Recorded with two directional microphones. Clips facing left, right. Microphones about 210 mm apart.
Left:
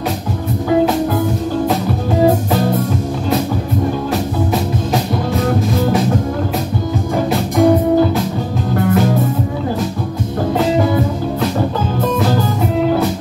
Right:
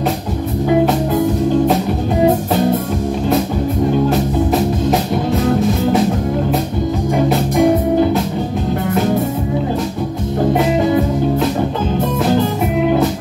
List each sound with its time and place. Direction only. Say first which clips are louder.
7.5 s music: left 3 dB; 20° right (ahead or behind)